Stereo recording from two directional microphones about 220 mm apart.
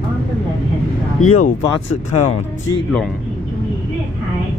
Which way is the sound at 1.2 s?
75° left (ahead or behind).